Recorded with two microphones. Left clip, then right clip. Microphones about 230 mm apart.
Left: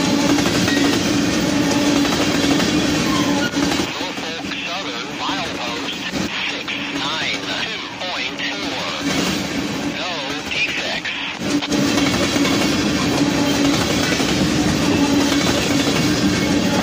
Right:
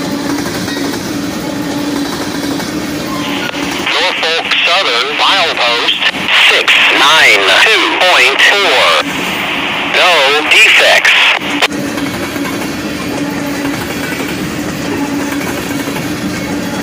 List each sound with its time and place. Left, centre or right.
4.6 s radio: right
6.3 s a sound: right
9.9 s radio: right